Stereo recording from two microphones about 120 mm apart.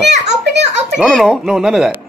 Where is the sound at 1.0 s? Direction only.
Centre (ahead or behind).